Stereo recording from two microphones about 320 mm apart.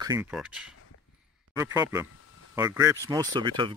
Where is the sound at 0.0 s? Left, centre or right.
Centre.